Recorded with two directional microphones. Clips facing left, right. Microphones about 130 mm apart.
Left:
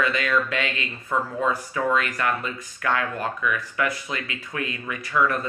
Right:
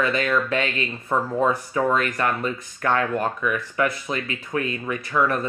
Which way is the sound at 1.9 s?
35° right (ahead or behind).